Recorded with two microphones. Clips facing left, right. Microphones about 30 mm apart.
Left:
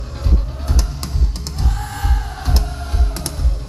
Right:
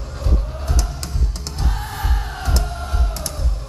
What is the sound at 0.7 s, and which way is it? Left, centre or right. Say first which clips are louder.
Music: left 2 dB; centre.